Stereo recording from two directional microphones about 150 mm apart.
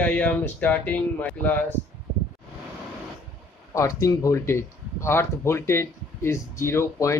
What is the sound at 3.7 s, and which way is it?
Speech, 20° left (ahead or behind).